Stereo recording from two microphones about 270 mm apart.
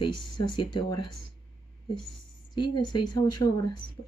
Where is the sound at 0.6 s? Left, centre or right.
Centre.